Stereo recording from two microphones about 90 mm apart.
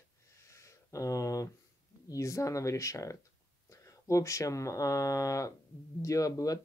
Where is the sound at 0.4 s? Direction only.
35° left (ahead or behind).